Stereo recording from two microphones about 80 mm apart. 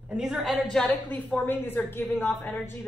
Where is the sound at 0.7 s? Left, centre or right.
Centre.